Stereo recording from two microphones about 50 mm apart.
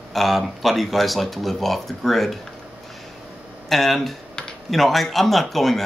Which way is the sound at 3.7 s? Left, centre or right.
Centre.